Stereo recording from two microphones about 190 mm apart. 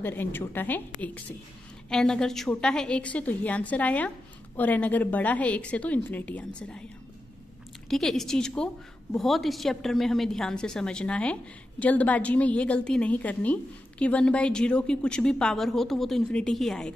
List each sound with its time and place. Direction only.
0.0 s a woman's voice: 10° left (ahead or behind)
1.9 s a woman's voice: 5° left (ahead or behind)
7.9 s a woman's voice: centre (ahead or behind)